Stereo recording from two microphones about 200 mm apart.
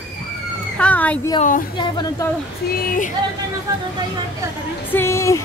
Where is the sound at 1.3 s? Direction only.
40° left (ahead or behind).